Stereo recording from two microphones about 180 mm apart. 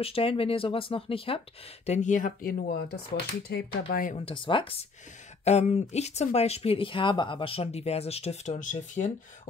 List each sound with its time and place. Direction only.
0.0 s speech: 30° left (ahead or behind)
1.9 s speech: 45° left (ahead or behind); by 4.1 s 60° left (ahead or behind)
4.1 s speech: 30° left (ahead or behind)
5.4 s speech: 40° left (ahead or behind)